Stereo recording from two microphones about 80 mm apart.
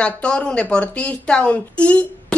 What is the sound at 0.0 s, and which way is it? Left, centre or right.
A woman's voice, centre.